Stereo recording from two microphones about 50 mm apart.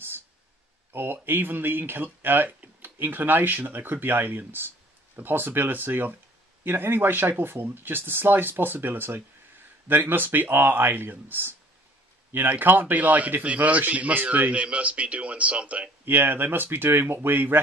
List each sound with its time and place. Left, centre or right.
0.9 s a man's voice: right
16.1 s speech: right